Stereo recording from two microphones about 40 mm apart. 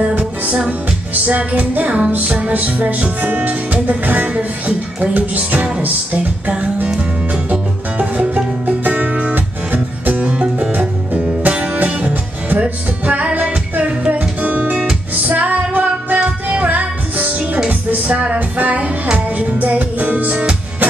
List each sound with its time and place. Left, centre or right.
0.1 s music: right
8.0 s music: right
14.1 s music: right